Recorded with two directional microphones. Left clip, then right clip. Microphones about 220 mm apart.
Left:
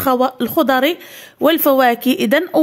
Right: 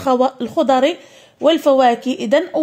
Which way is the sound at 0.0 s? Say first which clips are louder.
Even; 20° left (ahead or behind).